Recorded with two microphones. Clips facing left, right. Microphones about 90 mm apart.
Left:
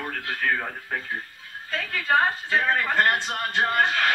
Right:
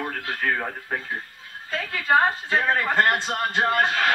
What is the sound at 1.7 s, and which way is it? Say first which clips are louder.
A man's voice: right 2 dB; 30° right (ahead or behind).